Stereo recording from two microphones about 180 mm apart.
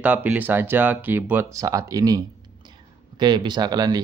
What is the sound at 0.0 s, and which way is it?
Speech, 10° right (ahead or behind).